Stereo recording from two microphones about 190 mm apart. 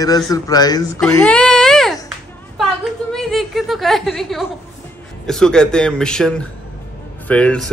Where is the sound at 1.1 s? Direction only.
5° left (ahead or behind).